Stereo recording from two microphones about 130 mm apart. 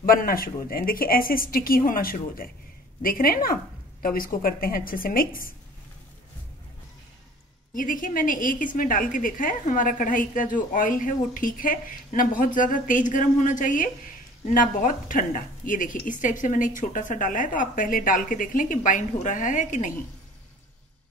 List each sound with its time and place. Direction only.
0.0 s a woman's voice: 90° left
7.7 s a woman's voice: 90° left; by 19.9 s 75° left (ahead or behind)